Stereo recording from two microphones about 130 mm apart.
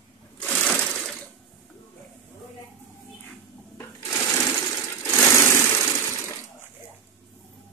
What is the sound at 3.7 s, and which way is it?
Sewing machine, 20° left (ahead or behind).